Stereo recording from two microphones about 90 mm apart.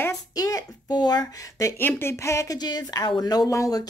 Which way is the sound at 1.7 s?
25° left (ahead or behind).